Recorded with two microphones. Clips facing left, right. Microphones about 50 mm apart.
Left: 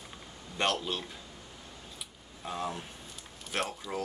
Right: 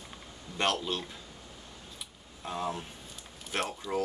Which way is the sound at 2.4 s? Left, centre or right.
Centre.